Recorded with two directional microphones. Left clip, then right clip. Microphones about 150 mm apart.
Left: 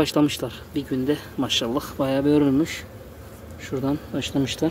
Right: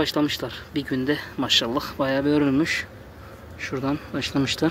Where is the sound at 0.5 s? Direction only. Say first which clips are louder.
Even; 25° left (ahead or behind).